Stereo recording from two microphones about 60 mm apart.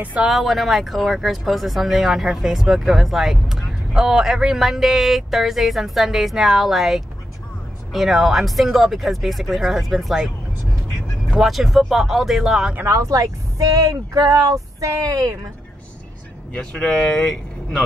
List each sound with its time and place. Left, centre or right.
0.2 s speech: centre
11.3 s speech: centre
12.9 s speech: right
13.7 s speech: right
16.7 s speech: centre